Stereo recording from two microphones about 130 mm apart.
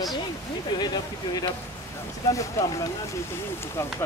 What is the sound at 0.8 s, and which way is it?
Speech, 35° left (ahead or behind).